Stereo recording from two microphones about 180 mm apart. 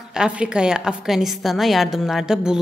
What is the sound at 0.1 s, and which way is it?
A woman's voice, 5° right (ahead or behind).